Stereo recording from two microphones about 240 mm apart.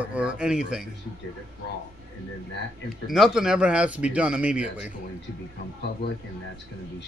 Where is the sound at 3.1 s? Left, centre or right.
Centre.